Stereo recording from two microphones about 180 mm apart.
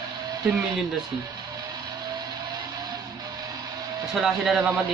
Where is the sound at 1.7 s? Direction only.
20° right (ahead or behind).